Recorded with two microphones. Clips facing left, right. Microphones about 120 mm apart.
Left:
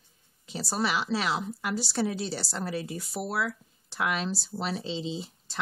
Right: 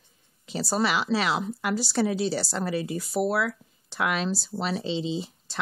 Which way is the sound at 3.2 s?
75° right (ahead or behind).